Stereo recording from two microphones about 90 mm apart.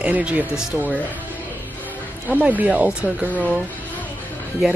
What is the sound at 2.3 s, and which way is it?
Speech, 20° right (ahead or behind).